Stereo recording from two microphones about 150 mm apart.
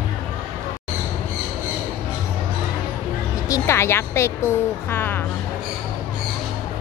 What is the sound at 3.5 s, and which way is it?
A woman's voice, 20° left (ahead or behind).